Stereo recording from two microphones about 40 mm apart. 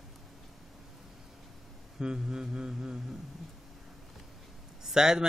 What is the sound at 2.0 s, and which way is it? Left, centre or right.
Mantra, right.